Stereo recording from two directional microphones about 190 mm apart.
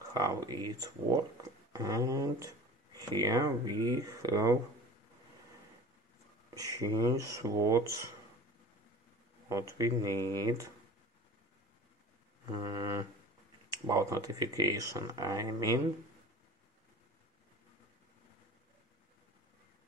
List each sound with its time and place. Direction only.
0.1 s speech: 20° right (ahead or behind)
6.5 s speech: 20° right (ahead or behind)
9.5 s speech: 15° right (ahead or behind)
12.6 s speech: 15° right (ahead or behind)